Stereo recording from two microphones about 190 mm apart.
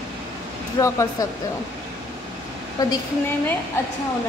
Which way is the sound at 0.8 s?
15° left (ahead or behind).